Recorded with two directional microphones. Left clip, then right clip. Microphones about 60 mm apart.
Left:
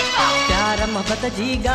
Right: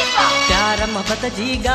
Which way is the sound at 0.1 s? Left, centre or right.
Left.